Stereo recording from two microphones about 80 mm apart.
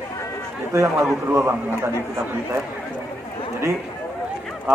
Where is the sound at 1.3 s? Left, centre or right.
Right.